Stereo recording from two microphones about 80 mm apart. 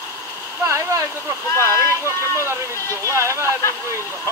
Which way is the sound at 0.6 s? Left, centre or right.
Right.